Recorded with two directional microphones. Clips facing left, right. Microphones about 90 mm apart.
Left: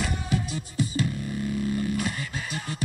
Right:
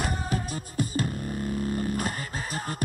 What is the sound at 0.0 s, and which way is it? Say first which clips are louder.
Music: left 1 dB; 40° right (ahead or behind).